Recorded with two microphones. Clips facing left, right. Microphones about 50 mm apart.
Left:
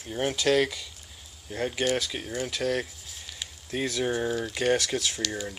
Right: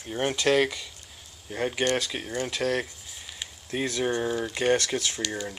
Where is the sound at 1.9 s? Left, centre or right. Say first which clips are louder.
Right 1 dB; centre.